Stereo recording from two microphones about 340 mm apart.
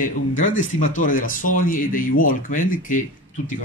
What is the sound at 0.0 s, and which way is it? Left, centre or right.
Speech, left.